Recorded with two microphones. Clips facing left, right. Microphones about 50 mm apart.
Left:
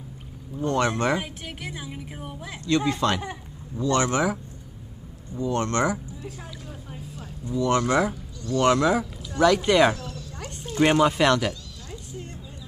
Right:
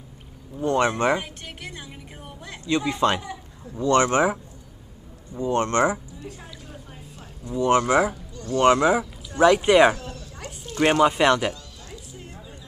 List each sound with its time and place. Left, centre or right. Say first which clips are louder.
0.7 s speech: right 3 dB; centre
1.1 s a woman's voice: right 1 dB; centre
2.6 s speech: right 1 dB; right
6.2 s vehicle: left 1 dB; centre
7.4 s speech: right 3 dB; right
7.8 s speech: right 2 dB; centre
8.4 s speech: right 1 dB; right
8.6 s speech: right 3 dB; centre
9.3 s speech: right 3 dB; right
10.3 s a sound: left 1 dB; centre
10.9 s speech: right 2 dB; centre
11.9 s music: left 4 dB; centre